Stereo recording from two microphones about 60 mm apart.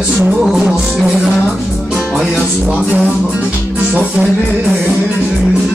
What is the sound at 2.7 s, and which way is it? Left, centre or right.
Music, right.